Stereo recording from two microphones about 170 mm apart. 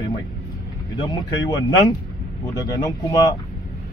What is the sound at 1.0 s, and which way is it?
Speech, 25° left (ahead or behind).